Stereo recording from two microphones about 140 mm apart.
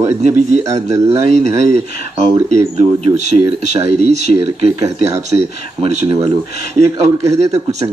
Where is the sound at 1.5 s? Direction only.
50° right (ahead or behind).